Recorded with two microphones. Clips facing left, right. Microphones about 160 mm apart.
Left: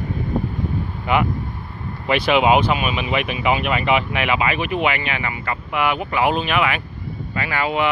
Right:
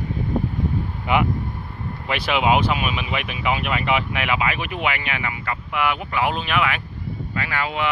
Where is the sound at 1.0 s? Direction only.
15° right (ahead or behind).